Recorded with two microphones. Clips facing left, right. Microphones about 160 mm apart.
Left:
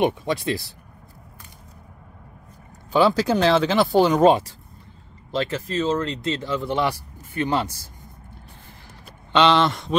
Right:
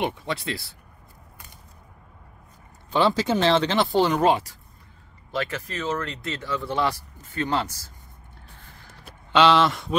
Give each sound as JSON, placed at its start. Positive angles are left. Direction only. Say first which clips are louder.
{"t": 0.0, "sound": "speech", "louder": "left 6 dB", "side_deg": 20}
{"t": 2.9, "sound": "speech", "louder": "left 3 dB", "side_deg": 5}
{"t": 9.3, "sound": "speech", "louder": "even", "side_deg": -5}